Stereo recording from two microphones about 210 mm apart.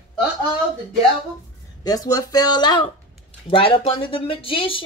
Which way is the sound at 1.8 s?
15° left (ahead or behind).